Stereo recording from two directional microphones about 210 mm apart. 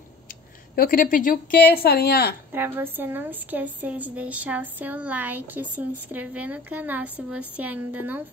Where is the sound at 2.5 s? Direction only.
10° right (ahead or behind).